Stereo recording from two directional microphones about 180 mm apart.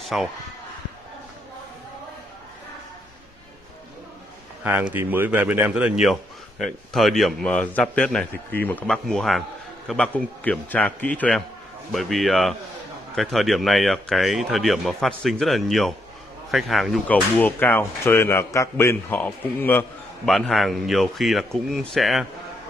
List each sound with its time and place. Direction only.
0.0 s speech: centre (ahead or behind)
4.6 s a man's voice: 10° right (ahead or behind); by 19.9 s 10° left (ahead or behind)
20.2 s a man's voice: centre (ahead or behind)